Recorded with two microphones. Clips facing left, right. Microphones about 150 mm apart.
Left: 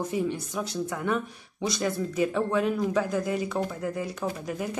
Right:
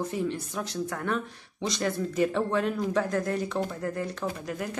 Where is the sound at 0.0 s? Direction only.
15° left (ahead or behind).